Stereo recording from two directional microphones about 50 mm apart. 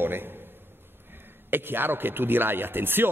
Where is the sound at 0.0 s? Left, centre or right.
Right.